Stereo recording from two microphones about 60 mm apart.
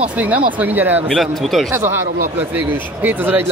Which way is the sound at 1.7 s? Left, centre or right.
Right.